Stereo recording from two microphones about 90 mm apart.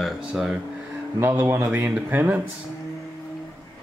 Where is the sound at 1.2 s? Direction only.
25° right (ahead or behind).